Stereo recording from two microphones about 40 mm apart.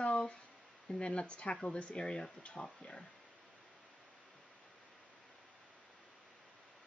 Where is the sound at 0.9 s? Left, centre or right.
Left.